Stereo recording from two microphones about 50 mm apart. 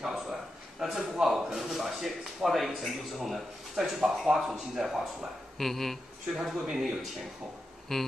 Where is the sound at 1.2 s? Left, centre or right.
Centre.